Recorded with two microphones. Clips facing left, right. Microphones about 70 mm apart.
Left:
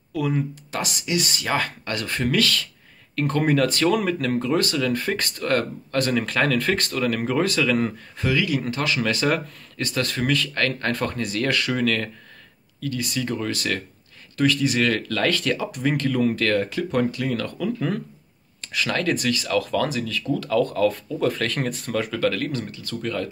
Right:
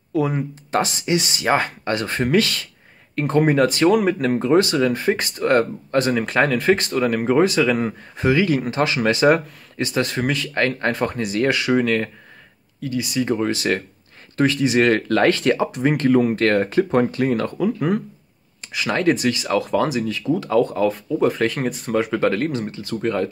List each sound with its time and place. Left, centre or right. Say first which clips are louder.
0.1 s speech: right 3 dB; right
8.3 s speech: right 5 dB; right; by 13.2 s centre
13.2 s speech: right 7 dB; right; by 21.9 s centre
21.9 s speech: right 4 dB; right